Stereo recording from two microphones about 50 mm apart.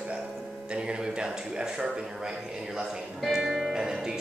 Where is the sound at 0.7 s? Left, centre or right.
Right.